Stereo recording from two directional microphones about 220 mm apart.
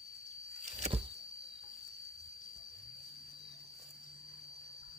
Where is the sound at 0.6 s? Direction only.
30° right (ahead or behind).